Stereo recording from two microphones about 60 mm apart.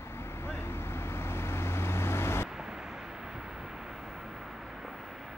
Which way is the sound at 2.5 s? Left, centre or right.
Centre.